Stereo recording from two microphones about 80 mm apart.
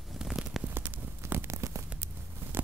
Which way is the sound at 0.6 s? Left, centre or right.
Right.